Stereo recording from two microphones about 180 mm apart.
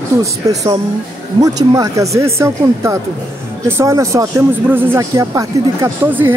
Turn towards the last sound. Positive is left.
turn(degrees=-15)  # may be behind; listen again after turning